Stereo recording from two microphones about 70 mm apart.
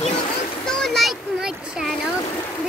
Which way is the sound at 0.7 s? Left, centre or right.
Centre.